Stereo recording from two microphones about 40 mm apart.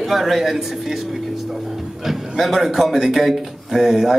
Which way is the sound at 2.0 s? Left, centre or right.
Centre.